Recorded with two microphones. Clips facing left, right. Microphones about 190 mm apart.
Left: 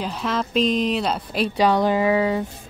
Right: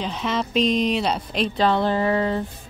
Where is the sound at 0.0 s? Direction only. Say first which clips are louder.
Even; 5° left (ahead or behind).